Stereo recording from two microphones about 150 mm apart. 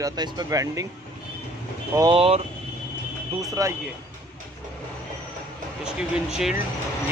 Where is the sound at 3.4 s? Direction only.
20° right (ahead or behind).